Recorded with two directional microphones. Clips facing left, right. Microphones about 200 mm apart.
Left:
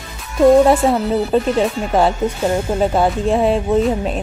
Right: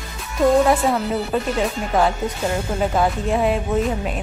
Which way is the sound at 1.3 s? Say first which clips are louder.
Left 7 dB; 30° left (ahead or behind).